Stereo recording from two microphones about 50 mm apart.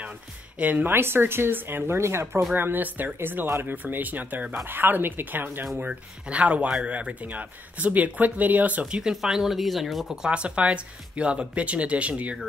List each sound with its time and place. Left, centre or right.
0.6 s speech: right
0.8 s speech: right
2.5 s speech: right
5.8 s speech: right
9.1 s speech: centre
10.2 s speech: right